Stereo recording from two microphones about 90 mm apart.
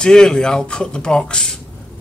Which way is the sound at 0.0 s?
10° left (ahead or behind).